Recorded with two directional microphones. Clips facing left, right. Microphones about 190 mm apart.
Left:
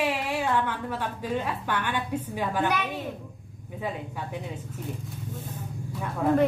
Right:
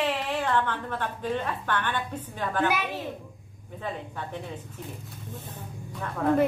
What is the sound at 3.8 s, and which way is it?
Speech, 10° left (ahead or behind).